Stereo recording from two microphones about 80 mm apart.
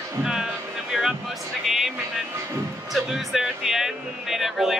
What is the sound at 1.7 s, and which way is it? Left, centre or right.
Music, centre.